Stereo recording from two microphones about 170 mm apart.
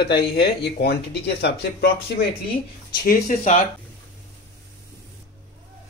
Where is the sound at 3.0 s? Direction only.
50° left (ahead or behind).